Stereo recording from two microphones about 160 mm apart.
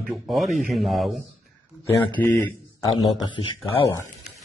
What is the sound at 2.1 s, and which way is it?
Speech, 10° left (ahead or behind).